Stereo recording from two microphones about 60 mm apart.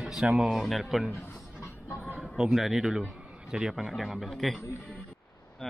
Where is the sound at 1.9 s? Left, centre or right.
Right.